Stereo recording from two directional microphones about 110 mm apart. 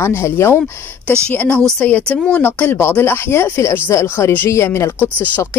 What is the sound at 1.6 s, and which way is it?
A woman's voice, 5° left (ahead or behind).